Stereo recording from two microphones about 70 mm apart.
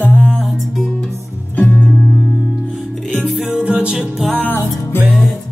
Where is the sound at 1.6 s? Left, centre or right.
Left.